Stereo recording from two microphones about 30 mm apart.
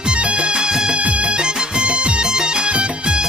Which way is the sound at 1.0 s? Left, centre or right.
Right.